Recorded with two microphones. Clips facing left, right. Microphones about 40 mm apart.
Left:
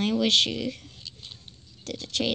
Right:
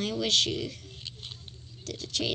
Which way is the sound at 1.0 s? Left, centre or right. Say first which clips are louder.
Right 1 dB; right.